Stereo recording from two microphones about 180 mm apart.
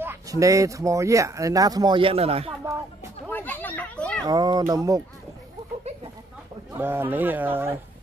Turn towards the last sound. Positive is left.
turn(degrees=-10)  # may be behind; listen again after turning